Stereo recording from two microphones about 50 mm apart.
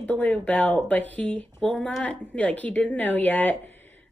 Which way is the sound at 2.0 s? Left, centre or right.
Left.